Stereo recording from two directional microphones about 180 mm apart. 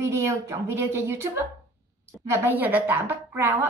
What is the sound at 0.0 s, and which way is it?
Speech, 15° right (ahead or behind).